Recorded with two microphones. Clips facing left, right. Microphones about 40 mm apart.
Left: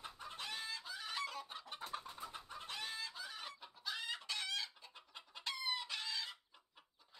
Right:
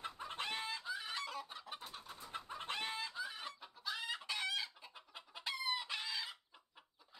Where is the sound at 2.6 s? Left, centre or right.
Right.